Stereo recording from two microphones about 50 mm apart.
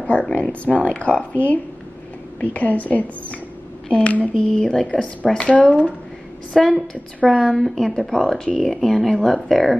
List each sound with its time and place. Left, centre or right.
0.0 s speech: left
5.2 s speech: centre
5.7 s speech: right
6.5 s speech: centre